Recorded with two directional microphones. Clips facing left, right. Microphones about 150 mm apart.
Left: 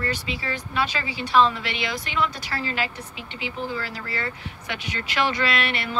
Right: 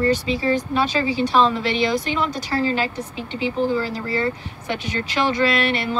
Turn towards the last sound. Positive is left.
turn(degrees=-40)  # may be behind; listen again after turning